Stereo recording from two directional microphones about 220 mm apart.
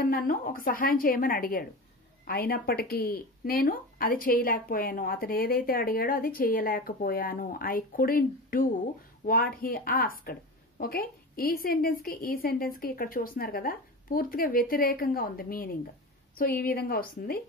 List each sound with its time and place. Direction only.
0.0 s speech: 40° left (ahead or behind)